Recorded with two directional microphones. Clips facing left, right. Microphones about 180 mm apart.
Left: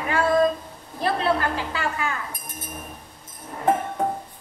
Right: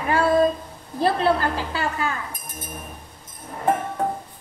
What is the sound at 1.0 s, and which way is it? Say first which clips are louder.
A woman's voice: right 3 dB; 35° right (ahead or behind).